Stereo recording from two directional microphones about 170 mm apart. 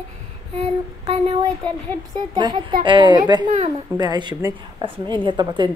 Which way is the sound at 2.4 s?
25° right (ahead or behind).